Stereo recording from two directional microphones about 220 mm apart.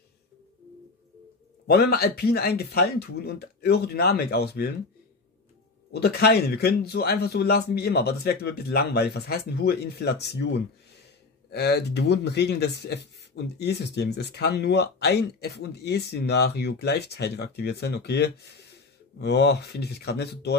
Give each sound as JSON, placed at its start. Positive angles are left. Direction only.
{"t": 1.7, "sound": "speech", "side_deg": 45}
{"t": 5.9, "sound": "speech", "side_deg": 45}